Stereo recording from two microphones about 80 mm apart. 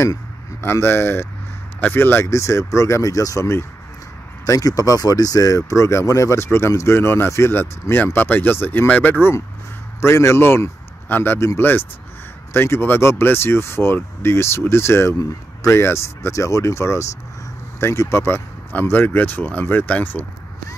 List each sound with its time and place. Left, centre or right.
0.6 s speech: left